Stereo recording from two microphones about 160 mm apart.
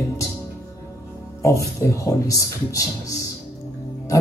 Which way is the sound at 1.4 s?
20° left (ahead or behind).